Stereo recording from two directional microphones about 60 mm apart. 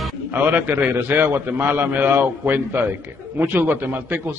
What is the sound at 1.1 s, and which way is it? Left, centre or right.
A man's voice, right.